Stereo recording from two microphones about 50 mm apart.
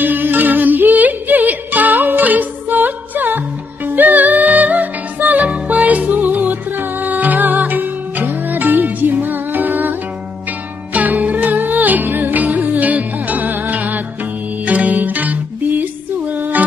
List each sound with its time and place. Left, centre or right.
0.0 s music: right